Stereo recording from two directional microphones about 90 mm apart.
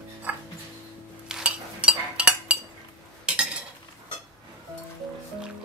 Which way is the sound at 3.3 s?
10° right (ahead or behind).